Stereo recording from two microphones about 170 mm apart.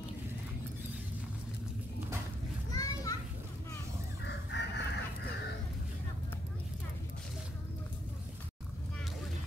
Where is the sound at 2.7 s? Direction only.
20° left (ahead or behind).